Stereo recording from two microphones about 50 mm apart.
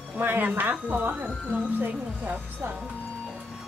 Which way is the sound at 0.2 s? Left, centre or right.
Right.